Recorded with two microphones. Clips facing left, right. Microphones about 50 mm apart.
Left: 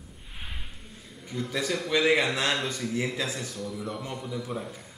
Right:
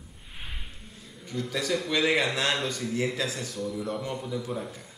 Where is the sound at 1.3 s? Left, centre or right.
Centre.